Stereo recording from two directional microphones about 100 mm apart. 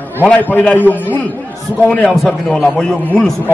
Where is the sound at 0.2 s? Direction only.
15° left (ahead or behind).